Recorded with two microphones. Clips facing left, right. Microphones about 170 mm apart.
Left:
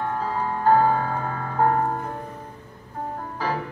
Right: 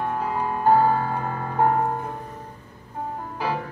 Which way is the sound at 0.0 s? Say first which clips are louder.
Even; 15° right (ahead or behind).